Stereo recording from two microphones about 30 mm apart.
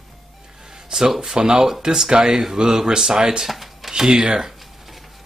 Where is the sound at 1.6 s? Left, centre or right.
Centre.